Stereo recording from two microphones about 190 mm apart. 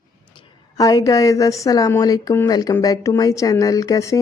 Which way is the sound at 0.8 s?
15° left (ahead or behind).